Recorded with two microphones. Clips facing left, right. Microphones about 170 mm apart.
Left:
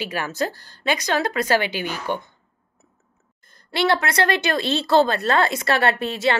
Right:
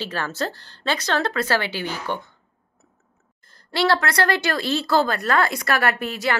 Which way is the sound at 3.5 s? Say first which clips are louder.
Even; 20° left (ahead or behind).